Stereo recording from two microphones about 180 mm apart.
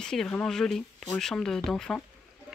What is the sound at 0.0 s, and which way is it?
Speech, 5° left (ahead or behind).